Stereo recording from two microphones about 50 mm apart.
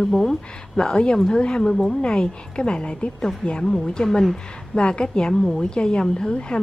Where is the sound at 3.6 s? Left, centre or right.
Centre.